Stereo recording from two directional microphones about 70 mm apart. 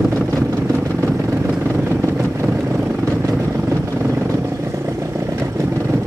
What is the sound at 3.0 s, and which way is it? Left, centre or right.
Vehicle, right.